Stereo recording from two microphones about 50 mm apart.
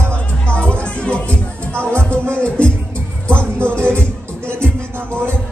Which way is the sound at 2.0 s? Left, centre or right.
Right.